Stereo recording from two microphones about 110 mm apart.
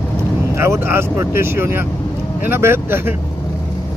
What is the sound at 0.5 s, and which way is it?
Speech, 25° right (ahead or behind).